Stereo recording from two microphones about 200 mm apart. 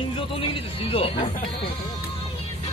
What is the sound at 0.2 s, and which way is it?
Speech, 25° left (ahead or behind).